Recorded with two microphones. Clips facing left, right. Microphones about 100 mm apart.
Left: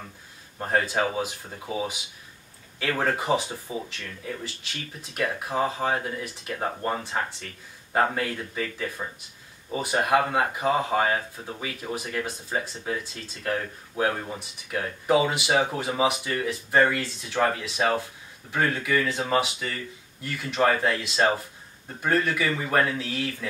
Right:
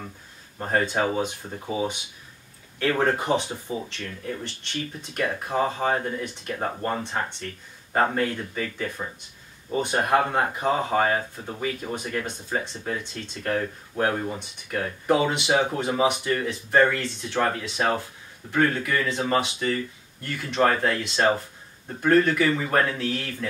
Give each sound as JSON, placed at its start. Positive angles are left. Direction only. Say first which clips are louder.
{"t": 0.6, "sound": "speech", "louder": "right 1 dB", "side_deg": 5}
{"t": 2.8, "sound": "speech", "louder": "right 3 dB", "side_deg": 0}
{"t": 4.6, "sound": "speech", "louder": "right 6 dB", "side_deg": 5}